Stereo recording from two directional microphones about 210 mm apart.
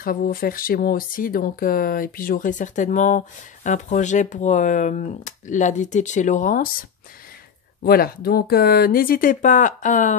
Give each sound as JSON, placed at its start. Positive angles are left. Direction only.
{"t": 0.0, "sound": "speech", "side_deg": 45}